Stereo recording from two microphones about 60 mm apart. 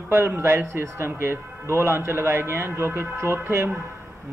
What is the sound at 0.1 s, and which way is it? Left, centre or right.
A man's voice, right.